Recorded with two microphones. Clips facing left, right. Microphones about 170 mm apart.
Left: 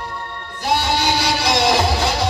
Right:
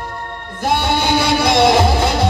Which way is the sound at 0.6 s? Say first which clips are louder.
Right 2 dB; 55° right (ahead or behind).